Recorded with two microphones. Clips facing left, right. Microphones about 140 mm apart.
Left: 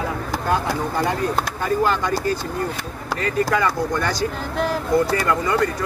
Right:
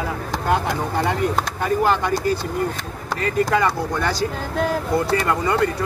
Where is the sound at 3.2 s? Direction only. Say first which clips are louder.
Right 1 dB; 25° right (ahead or behind).